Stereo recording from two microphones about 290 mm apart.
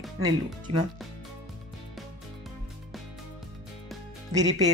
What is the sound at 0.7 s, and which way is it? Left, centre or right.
Speech, right.